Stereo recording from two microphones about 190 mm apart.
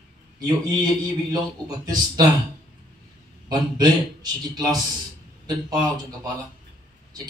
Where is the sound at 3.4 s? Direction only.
20° right (ahead or behind).